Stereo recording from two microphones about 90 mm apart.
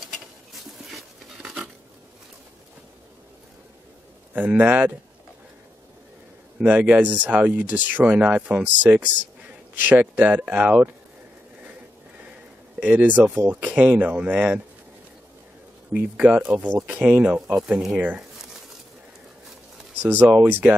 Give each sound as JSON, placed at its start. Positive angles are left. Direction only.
{"t": 0.9, "sound": "stir", "side_deg": -5}
{"t": 4.3, "sound": "speech", "side_deg": -15}
{"t": 6.6, "sound": "speech", "side_deg": -15}
{"t": 12.8, "sound": "speech", "side_deg": -20}
{"t": 15.9, "sound": "speech", "side_deg": -15}
{"t": 20.0, "sound": "speech", "side_deg": -20}